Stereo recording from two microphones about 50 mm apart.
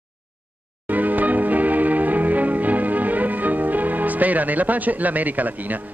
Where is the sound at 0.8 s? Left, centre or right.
Right.